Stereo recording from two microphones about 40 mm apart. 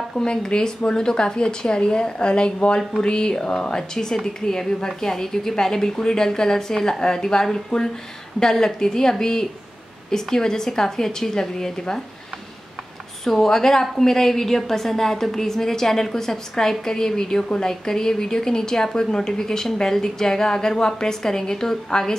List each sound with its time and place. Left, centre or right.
0.2 s a woman's voice: left
13.2 s a woman's voice: centre